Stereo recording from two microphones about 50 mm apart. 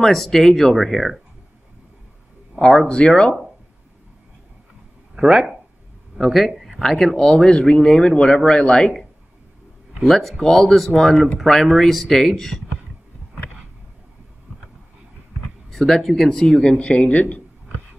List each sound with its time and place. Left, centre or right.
0.0 s speech: centre
2.9 s speech: centre
5.1 s speech: centre
10.0 s speech: centre
15.7 s speech: centre; by 17.4 s left